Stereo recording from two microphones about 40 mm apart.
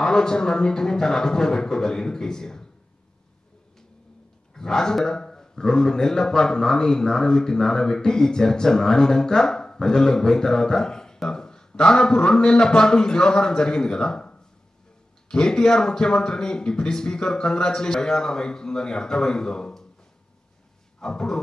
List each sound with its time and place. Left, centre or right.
0.0 s a man's voice: centre
4.6 s a man's voice: centre
21.0 s a man's voice: centre